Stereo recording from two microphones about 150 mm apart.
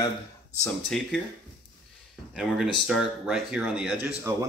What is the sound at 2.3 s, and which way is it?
Speech, centre (ahead or behind).